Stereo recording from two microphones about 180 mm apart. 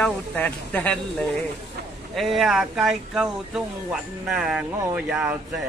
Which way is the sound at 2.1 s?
Centre (ahead or behind).